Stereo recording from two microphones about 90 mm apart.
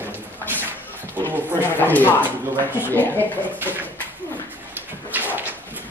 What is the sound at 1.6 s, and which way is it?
Speech, 25° left (ahead or behind).